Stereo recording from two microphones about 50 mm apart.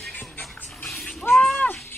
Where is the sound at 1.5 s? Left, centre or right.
Left.